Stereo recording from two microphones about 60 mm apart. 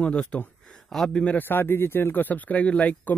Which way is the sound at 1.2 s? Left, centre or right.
Left.